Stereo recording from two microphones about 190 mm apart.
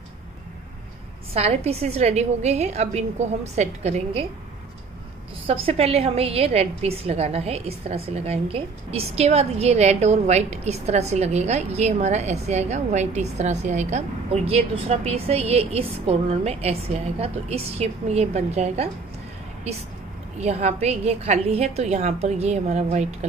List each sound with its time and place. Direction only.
1.3 s a woman's voice: 35° right (ahead or behind)
5.5 s a woman's voice: 30° right (ahead or behind)
20.3 s a woman's voice: 35° right (ahead or behind)